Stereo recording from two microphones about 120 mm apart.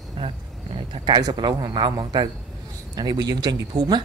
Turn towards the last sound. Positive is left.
turn(degrees=-35)  # may be behind; listen again after turning